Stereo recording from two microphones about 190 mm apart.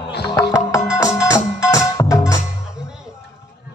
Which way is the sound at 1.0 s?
15° left (ahead or behind).